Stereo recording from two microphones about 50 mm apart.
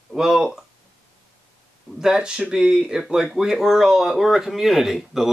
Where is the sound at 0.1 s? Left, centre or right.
Centre.